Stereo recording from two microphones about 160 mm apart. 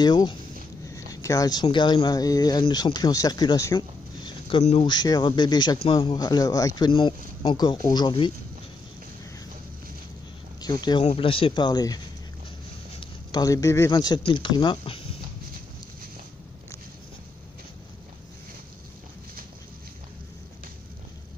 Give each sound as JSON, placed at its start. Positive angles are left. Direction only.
{"t": 0.0, "sound": "speech", "side_deg": 25}
{"t": 4.8, "sound": "speech", "side_deg": 25}
{"t": 10.6, "sound": "speech", "side_deg": 25}
{"t": 13.0, "sound": "speech", "side_deg": 25}